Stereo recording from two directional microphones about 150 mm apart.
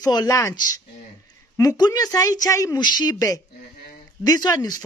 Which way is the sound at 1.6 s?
25° left (ahead or behind).